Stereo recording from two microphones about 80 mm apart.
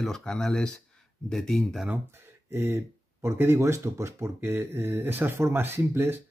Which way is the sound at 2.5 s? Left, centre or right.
Right.